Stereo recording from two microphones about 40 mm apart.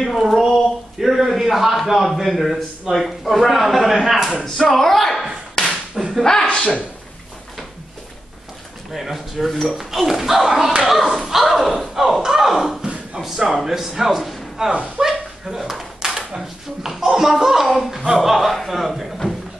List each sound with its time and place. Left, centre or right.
0.1 s a man's voice: centre
4.6 s speech: centre
5.6 s whip: centre
5.9 s whip: centre
6.5 s speech: centre
8.9 s speech: centre
11.1 s a sound: centre
12.8 s a sound: right
13.2 s a man's voice: centre
15.0 s chuckle: centre
15.8 s speech: centre